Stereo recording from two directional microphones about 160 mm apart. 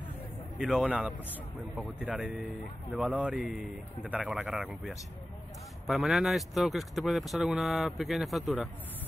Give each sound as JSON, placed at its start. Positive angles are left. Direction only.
{"t": 0.6, "sound": "speech", "side_deg": -5}
{"t": 5.9, "sound": "speech", "side_deg": 0}